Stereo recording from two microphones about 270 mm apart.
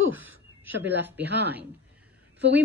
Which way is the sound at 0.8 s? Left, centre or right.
Right.